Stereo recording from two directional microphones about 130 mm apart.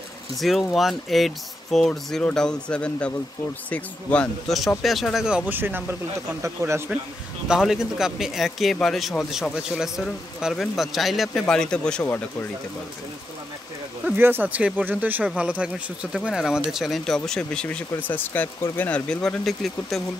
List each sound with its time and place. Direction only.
0.4 s speech: centre (ahead or behind); by 6.8 s 20° right (ahead or behind)
7.4 s speech: 5° right (ahead or behind)
14.0 s speech: 15° right (ahead or behind); by 20.0 s centre (ahead or behind)